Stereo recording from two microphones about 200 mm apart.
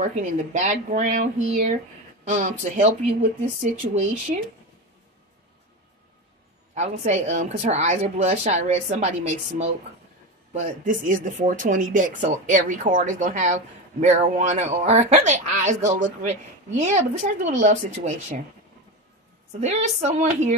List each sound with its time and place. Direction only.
0.0 s speech: 40° right (ahead or behind)
6.7 s speech: 35° right (ahead or behind)
19.6 s speech: 35° right (ahead or behind)